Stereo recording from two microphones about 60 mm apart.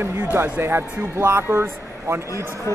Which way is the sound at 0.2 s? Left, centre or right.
Right.